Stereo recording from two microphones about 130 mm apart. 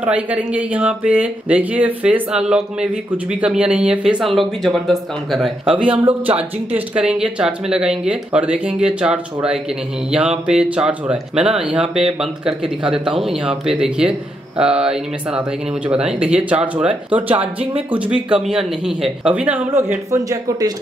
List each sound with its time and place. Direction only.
0.0 s speech: 10° right (ahead or behind); by 20.7 s 25° right (ahead or behind)